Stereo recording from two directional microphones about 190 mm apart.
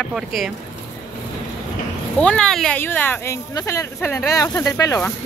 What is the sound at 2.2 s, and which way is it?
Speech, 5° left (ahead or behind).